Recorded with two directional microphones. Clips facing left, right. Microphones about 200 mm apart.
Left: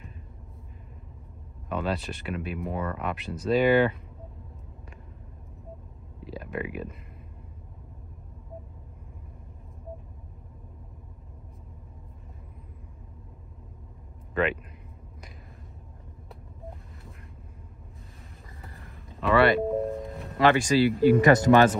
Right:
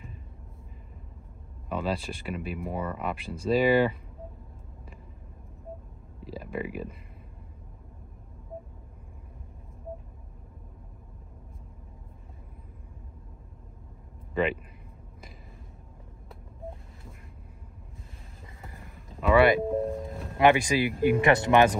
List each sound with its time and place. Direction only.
1.7 s speech: centre (ahead or behind)
6.2 s speech: centre (ahead or behind)
14.3 s speech: centre (ahead or behind)
18.8 s vehicle: centre (ahead or behind)
19.2 s music: 15° right (ahead or behind)
19.7 s music: centre (ahead or behind)
20.3 s speech: 15° right (ahead or behind)